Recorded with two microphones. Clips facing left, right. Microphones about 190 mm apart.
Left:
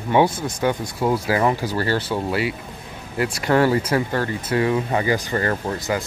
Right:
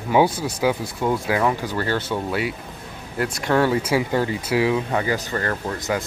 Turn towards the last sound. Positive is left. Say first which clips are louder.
# left 1 dB
turn(degrees=5)  # may be behind; listen again after turning